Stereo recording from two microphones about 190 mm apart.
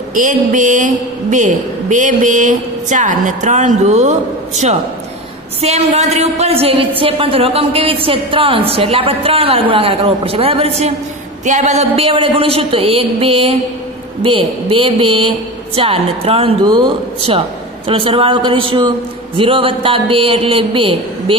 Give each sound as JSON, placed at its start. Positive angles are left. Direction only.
{"t": 0.1, "sound": "a woman's voice", "side_deg": -45}